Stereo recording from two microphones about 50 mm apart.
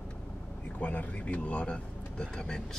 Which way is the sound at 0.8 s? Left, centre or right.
Left.